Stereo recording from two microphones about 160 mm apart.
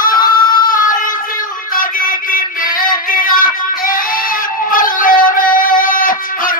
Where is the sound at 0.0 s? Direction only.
60° left (ahead or behind).